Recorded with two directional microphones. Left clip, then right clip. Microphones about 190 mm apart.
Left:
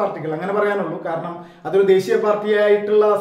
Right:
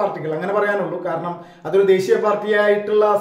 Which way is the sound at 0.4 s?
10° right (ahead or behind).